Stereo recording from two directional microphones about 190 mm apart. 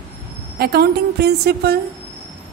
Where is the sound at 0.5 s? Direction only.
55° right (ahead or behind).